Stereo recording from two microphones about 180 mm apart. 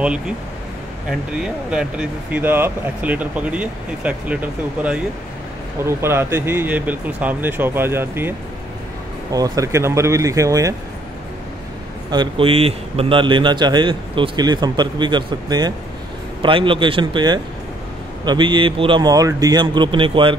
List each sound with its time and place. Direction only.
1.4 s speech: 5° right (ahead or behind)
12.1 s speech: 25° right (ahead or behind)